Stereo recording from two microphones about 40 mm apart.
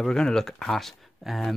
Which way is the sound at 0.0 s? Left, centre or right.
Centre.